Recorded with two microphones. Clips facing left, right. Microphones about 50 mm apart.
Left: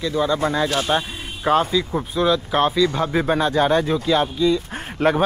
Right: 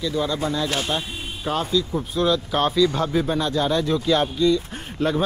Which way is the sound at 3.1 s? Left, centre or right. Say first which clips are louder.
Left 3 dB; left.